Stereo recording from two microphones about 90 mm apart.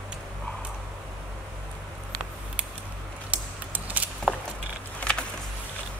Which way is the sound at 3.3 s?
20° right (ahead or behind).